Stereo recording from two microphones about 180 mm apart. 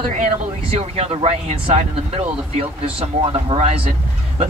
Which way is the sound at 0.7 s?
35° right (ahead or behind).